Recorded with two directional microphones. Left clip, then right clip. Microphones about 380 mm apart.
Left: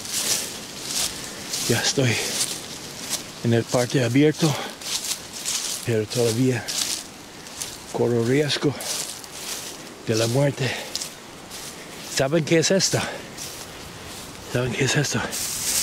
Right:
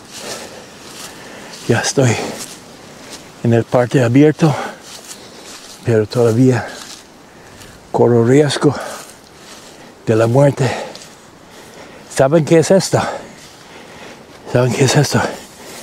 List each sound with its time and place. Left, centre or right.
1.7 s speech: right
3.4 s speech: right
5.9 s speech: right
7.9 s speech: right
10.0 s speech: right
12.2 s speech: right
14.5 s speech: right